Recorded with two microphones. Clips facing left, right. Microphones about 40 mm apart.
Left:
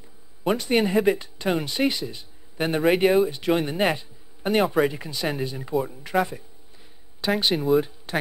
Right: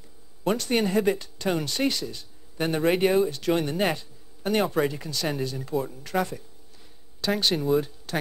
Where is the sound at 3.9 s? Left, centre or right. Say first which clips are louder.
Left 2 dB; centre.